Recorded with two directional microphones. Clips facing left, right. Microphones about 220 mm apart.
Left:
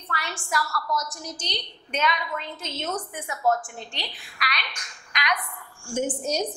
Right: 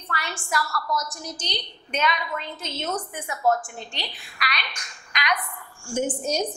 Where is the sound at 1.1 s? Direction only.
10° right (ahead or behind).